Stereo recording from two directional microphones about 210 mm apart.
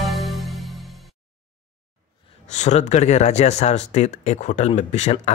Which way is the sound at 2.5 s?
30° left (ahead or behind).